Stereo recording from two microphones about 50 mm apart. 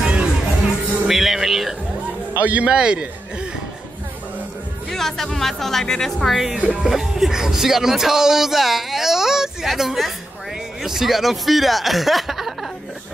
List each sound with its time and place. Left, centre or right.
0.0 s music: centre
1.0 s music: centre
2.4 s a man's voice: right
2.7 s a man's voice: centre
4.8 s speech: centre